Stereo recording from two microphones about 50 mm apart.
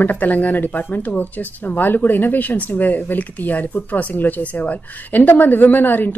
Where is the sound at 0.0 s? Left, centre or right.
Left.